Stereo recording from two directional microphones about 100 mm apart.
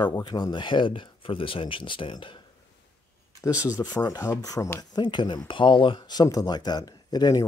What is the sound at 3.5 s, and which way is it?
Speech, 15° right (ahead or behind).